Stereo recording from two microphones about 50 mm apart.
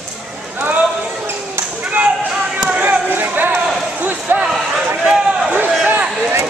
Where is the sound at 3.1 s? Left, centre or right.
Right.